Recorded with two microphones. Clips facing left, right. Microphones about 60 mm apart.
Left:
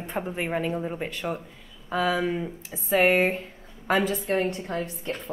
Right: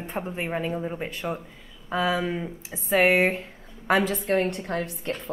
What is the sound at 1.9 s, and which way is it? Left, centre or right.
Speech, right.